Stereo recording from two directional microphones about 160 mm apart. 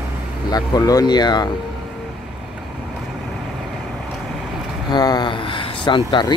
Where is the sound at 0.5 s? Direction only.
25° left (ahead or behind).